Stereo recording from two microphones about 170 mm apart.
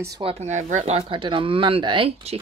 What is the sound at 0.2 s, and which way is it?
Speech, 40° right (ahead or behind).